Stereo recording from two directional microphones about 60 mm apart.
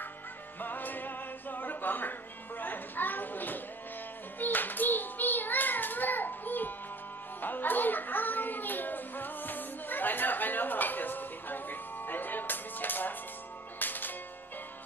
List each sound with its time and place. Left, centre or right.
0.6 s music: left
4.4 s child singing: left
13.7 s music: left